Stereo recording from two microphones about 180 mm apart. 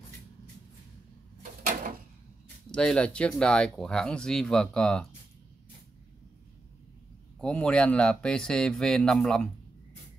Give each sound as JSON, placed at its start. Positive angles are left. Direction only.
{"t": 1.4, "sound": "a sound", "side_deg": -45}
{"t": 2.7, "sound": "speech", "side_deg": 5}
{"t": 7.3, "sound": "speech", "side_deg": 5}